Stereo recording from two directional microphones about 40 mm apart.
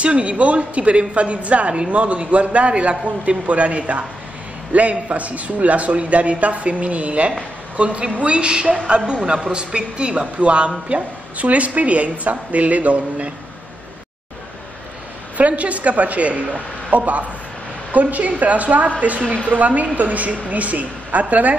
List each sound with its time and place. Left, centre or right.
0.0 s a woman's voice: right
15.3 s speech: right